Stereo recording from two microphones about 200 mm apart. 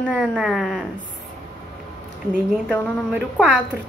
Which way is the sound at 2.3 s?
5° right (ahead or behind).